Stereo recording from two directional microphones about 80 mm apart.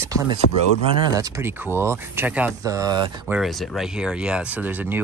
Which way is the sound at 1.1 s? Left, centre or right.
Right.